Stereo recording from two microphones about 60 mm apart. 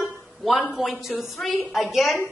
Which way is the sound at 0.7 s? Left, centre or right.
Centre.